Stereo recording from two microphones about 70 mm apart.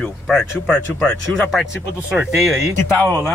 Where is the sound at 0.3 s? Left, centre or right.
Centre.